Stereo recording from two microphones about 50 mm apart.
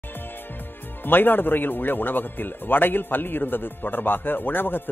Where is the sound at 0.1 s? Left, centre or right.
Left.